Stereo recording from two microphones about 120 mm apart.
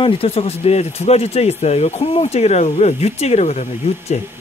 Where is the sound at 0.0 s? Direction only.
50° left (ahead or behind).